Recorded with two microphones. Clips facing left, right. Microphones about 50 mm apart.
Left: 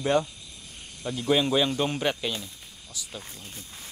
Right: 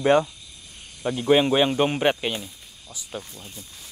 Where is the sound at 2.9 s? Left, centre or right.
Right.